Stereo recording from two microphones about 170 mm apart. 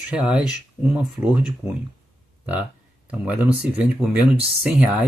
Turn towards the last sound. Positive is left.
turn(degrees=-5)  # may be behind; listen again after turning